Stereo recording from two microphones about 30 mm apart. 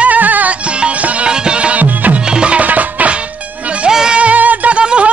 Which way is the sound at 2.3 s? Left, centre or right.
Right.